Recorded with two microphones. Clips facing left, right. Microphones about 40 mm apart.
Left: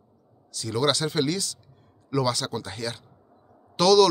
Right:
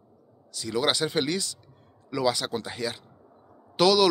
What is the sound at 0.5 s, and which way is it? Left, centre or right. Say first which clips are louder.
Speech: left 2 dB; centre.